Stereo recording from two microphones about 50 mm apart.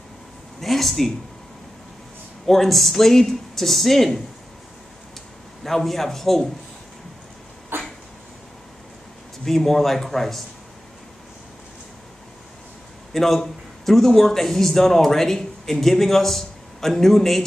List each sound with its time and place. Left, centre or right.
0.6 s speech: centre
2.4 s speech: centre
5.6 s speech: centre
7.7 s a sound: right
9.4 s speech: centre
13.1 s a man's voice: centre